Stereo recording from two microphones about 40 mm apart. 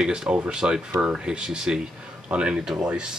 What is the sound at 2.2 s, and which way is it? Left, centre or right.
Speech, right.